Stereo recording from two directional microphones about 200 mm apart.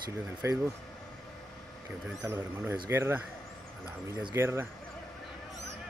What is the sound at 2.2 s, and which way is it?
Speech, 10° right (ahead or behind).